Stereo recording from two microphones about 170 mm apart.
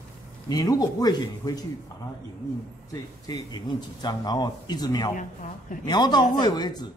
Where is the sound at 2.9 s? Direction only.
25° left (ahead or behind).